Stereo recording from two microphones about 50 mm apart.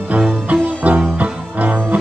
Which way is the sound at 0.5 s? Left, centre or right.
Right.